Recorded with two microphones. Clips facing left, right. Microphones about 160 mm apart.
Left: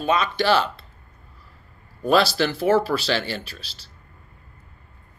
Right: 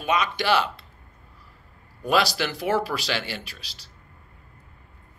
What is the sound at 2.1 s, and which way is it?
A man's voice, 10° right (ahead or behind).